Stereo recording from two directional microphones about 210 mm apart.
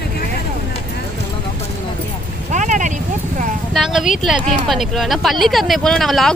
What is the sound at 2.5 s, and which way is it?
Vehicle, 35° right (ahead or behind).